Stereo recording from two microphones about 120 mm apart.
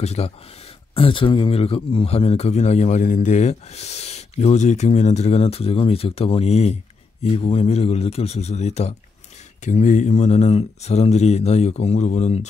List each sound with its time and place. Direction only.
0.0 s speech: 60° left (ahead or behind)
9.6 s speech: 90° left; by 12.4 s 70° left (ahead or behind)